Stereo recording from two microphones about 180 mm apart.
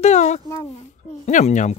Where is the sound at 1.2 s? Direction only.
40° left (ahead or behind).